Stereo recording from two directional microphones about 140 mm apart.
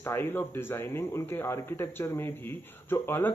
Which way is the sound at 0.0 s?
15° left (ahead or behind).